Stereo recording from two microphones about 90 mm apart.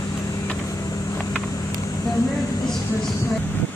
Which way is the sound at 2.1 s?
Centre (ahead or behind).